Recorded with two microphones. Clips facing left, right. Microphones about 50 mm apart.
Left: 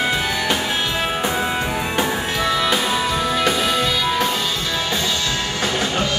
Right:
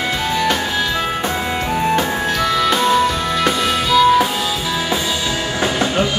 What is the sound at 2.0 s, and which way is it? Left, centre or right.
Music, left.